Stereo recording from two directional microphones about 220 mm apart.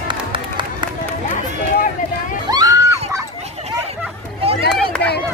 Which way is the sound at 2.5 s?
15° right (ahead or behind).